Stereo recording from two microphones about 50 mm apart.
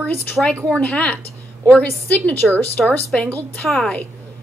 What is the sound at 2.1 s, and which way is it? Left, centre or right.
Speech, left.